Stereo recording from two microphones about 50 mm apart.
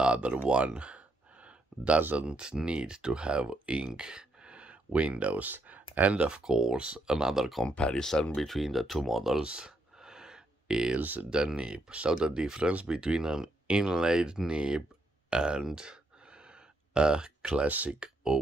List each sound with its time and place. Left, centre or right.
0.0 s a sound: right
2.1 s speech: centre
6.1 s speech: right
6.4 s speech: centre
7.6 s speech: centre
9.4 s a sound: centre
11.0 s speech: right
11.2 s speech: centre
15.2 s a sound: centre
17.6 s speech: right
17.9 s speech: centre